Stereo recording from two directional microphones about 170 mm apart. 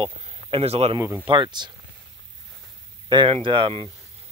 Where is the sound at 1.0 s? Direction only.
15° right (ahead or behind).